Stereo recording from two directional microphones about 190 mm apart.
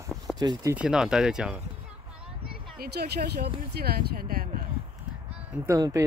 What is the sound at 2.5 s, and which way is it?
Speech, 50° right (ahead or behind).